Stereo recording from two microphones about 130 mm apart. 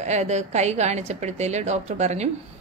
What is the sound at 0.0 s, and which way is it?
A woman's voice, 60° right (ahead or behind).